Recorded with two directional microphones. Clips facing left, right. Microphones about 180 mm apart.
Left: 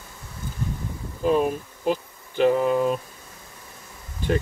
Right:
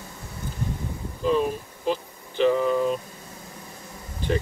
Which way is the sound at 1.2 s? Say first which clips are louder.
Left 2 dB; 50° left (ahead or behind).